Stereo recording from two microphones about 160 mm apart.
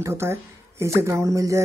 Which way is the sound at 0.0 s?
15° right (ahead or behind).